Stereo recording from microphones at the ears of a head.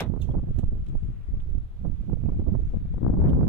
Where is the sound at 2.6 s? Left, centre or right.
Left.